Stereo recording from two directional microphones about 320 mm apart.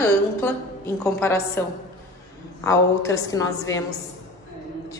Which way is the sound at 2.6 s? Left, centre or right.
Centre.